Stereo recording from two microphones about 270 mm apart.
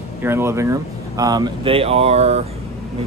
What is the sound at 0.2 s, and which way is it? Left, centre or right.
Speech, centre.